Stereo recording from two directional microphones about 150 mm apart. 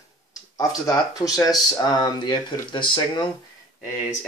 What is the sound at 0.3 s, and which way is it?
Speech, 25° left (ahead or behind).